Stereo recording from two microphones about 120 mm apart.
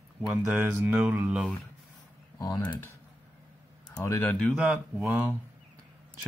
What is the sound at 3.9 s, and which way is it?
Speech, 15° left (ahead or behind).